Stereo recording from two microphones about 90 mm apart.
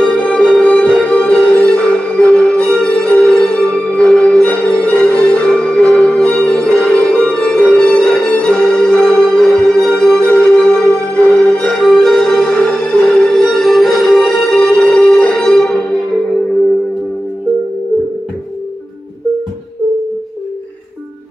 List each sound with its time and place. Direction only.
0.0 s music: 10° left (ahead or behind)